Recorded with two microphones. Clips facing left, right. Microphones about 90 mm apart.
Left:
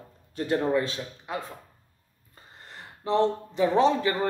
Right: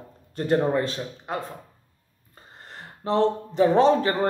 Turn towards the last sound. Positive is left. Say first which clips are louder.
# right 4 dB
turn(degrees=-40)  # may be behind; listen again after turning